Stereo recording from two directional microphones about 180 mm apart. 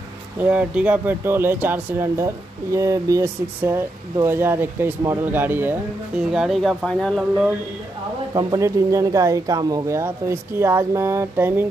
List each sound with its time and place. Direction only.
0.4 s speech: 10° right (ahead or behind)
8.4 s speech: 20° right (ahead or behind)